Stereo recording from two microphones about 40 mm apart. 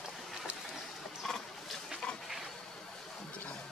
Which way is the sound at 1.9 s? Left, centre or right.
Centre.